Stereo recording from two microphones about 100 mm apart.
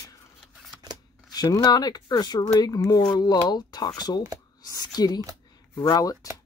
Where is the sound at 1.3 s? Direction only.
40° left (ahead or behind).